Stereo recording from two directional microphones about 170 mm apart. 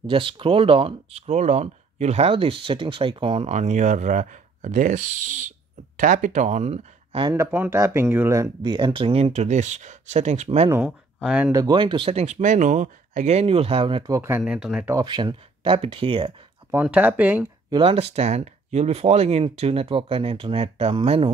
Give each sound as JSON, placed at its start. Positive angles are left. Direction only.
{"t": 0.0, "sound": "speech", "side_deg": -30}
{"t": 7.2, "sound": "speech", "side_deg": -15}
{"t": 10.7, "sound": "speech", "side_deg": -5}
{"t": 11.5, "sound": "speech", "side_deg": -25}
{"t": 14.1, "sound": "speech", "side_deg": -15}
{"t": 14.4, "sound": "speech", "side_deg": -5}
{"t": 15.0, "sound": "speech", "side_deg": -25}
{"t": 16.7, "sound": "speech", "side_deg": -10}
{"t": 17.6, "sound": "speech", "side_deg": -30}